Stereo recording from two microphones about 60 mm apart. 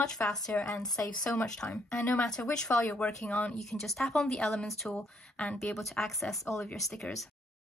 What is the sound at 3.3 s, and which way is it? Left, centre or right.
Speech, left.